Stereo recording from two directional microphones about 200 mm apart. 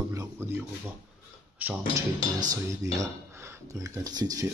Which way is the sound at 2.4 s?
15° right (ahead or behind).